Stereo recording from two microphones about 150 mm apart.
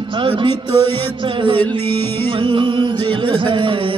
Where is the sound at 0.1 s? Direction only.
35° right (ahead or behind).